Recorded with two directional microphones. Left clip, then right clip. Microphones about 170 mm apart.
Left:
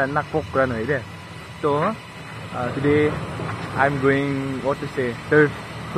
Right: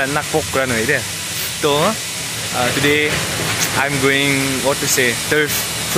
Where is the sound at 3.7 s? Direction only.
50° right (ahead or behind).